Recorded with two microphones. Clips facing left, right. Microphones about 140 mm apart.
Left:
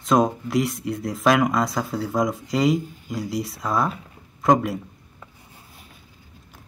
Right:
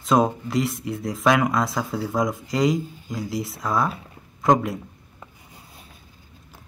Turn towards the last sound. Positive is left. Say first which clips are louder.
# left 1 dB
turn(degrees=0)  # may be behind; listen again after turning